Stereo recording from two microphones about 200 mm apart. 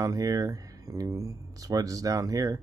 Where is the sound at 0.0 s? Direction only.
15° right (ahead or behind).